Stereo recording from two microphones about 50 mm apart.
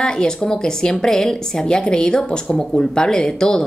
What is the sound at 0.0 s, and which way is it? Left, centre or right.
A woman's voice, centre.